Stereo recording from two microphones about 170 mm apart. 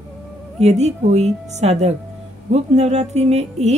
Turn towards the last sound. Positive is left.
turn(degrees=-40)  # may be behind; listen again after turning